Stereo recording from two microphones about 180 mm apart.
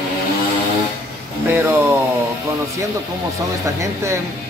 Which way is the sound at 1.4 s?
15° right (ahead or behind).